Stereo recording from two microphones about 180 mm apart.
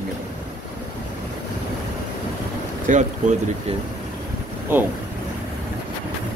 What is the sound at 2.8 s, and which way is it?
Speech, 45° right (ahead or behind).